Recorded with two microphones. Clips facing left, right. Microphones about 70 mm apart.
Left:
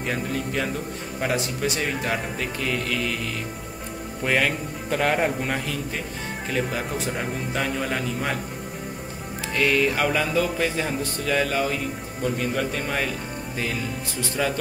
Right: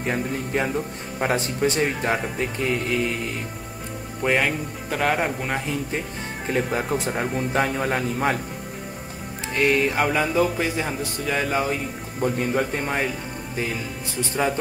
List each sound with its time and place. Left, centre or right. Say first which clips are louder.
0.0 s speech: right 1 dB; right
2.3 s speech: right 2 dB; centre
4.2 s speech: right 1 dB; centre
6.5 s speech: right 4 dB; right
9.5 s music: right 1 dB; right
12.2 s speech: right 3 dB; right
14.2 s speech: right 2 dB; right